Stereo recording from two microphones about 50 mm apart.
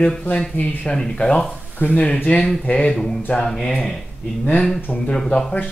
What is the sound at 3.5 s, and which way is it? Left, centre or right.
Speech, centre.